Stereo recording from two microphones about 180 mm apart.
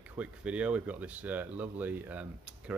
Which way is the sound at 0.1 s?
5° right (ahead or behind).